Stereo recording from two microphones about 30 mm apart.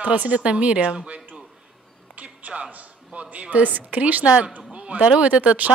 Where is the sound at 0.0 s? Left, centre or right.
Right.